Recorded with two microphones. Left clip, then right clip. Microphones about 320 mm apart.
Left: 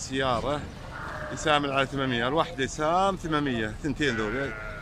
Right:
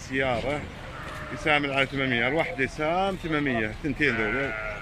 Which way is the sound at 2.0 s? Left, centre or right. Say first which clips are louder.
Right 2 dB; left.